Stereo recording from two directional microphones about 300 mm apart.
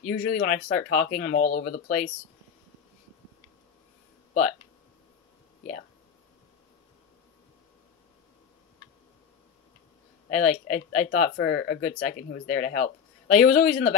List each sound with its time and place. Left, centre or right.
0.0 s speech: left
0.7 s speech: left
0.9 s speech: left
4.3 s speech: left
10.3 s speech: left